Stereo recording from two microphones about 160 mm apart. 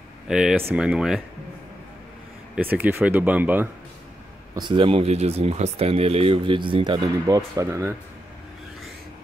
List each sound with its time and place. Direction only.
0.3 s speech: 5° right (ahead or behind)
2.5 s speech: 10° right (ahead or behind)
4.6 s speech: 30° right (ahead or behind)